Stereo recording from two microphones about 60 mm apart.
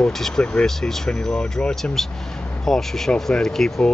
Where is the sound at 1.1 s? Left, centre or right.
Centre.